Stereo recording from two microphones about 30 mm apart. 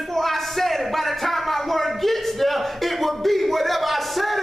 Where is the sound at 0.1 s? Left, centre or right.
Centre.